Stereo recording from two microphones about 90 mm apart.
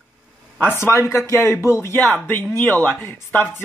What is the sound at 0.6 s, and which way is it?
Speech, 25° left (ahead or behind).